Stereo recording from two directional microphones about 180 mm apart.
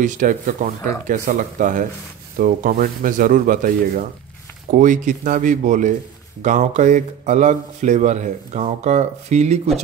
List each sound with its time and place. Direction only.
0.0 s speech: 45° right (ahead or behind)